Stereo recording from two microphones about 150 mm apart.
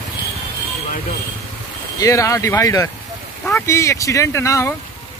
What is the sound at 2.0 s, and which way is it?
Speech, 20° left (ahead or behind).